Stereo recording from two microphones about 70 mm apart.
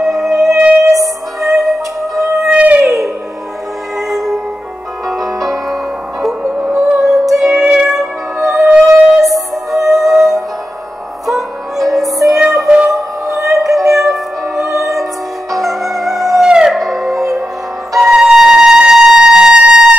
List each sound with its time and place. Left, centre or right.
0.0 s music: centre
0.8 s music: right
1.4 s music: centre
2.1 s music: right
2.5 s howl: right
4.1 s music: centre
7.0 s music: centre